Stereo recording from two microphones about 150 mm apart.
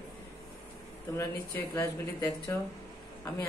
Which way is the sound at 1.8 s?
25° left (ahead or behind).